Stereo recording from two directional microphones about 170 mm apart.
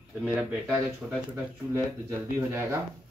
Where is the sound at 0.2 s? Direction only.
5° right (ahead or behind).